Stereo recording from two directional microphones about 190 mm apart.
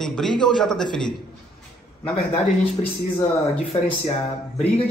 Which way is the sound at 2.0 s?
30° left (ahead or behind).